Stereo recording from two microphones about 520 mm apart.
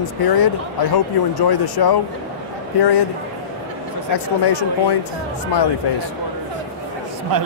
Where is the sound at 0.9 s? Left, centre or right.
Left.